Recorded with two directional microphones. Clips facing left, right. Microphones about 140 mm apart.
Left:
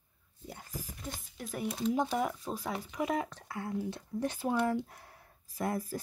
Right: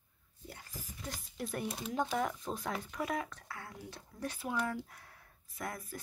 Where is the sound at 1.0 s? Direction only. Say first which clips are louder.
Right 1 dB; centre (ahead or behind).